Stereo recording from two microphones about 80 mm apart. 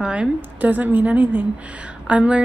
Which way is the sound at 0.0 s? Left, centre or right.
Centre.